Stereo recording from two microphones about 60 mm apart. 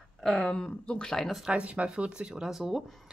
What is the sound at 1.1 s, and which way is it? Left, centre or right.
Speech, centre.